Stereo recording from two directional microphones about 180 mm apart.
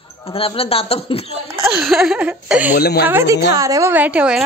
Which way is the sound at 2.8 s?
65° left (ahead or behind).